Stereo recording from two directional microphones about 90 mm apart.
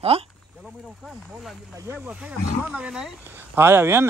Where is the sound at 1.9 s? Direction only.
15° right (ahead or behind).